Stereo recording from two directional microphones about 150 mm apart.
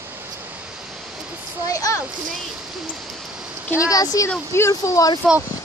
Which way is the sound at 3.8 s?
25° left (ahead or behind).